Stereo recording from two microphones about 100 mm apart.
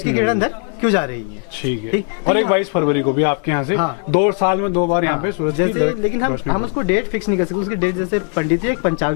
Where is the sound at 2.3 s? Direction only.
Centre (ahead or behind).